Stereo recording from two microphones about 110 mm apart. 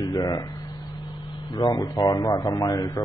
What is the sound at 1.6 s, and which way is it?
A man's voice, 35° left (ahead or behind).